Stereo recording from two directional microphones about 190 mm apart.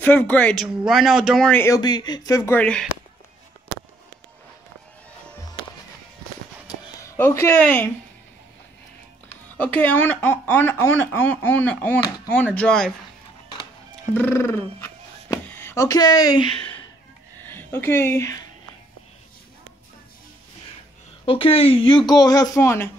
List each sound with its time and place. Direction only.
0.0 s speech: 10° left (ahead or behind)
7.0 s speech: 15° left (ahead or behind)
9.6 s speech: 10° left (ahead or behind)
14.1 s speech: 10° left (ahead or behind)
17.5 s speech: 10° left (ahead or behind)
21.3 s speech: 30° left (ahead or behind)